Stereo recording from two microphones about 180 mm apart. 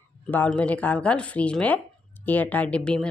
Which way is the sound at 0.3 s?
10° left (ahead or behind).